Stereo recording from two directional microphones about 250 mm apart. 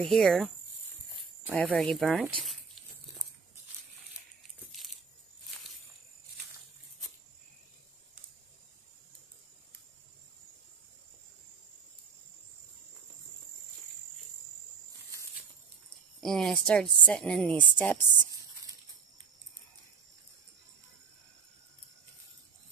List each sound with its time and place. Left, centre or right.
0.0 s speech: centre
1.5 s speech: centre
16.2 s speech: centre